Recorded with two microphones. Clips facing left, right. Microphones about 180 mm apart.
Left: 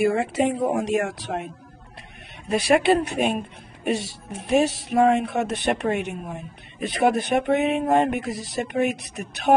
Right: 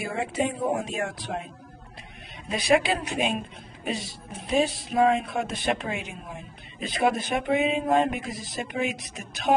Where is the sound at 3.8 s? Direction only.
70° left (ahead or behind).